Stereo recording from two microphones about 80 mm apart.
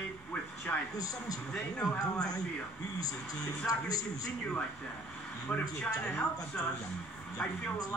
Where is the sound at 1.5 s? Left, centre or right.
Centre.